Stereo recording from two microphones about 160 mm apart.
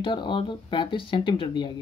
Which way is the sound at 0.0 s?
30° left (ahead or behind).